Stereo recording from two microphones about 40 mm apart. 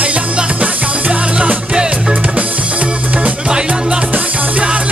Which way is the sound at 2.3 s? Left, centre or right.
Right.